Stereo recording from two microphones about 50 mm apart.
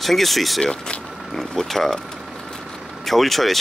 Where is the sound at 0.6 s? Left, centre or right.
Centre.